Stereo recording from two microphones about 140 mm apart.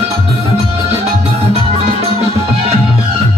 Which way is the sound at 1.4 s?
50° right (ahead or behind).